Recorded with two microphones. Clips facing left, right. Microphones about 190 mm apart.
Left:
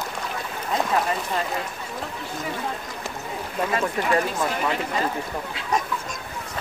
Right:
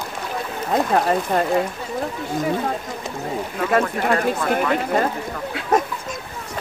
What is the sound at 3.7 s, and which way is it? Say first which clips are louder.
Speech: right 5 dB; 55° right (ahead or behind).